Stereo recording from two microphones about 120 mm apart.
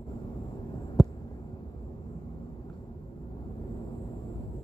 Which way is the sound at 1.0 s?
Centre (ahead or behind).